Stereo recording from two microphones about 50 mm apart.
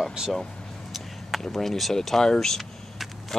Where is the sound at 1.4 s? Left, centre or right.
Centre.